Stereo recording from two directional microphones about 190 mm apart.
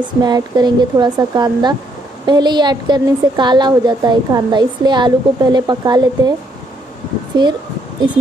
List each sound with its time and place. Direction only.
0.2 s a woman's voice: 20° right (ahead or behind)
7.3 s a woman's voice: 25° right (ahead or behind)